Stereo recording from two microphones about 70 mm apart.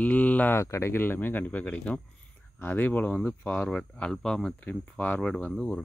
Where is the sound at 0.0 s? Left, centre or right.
Left.